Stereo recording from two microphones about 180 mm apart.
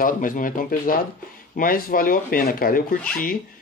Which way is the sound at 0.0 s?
50° left (ahead or behind).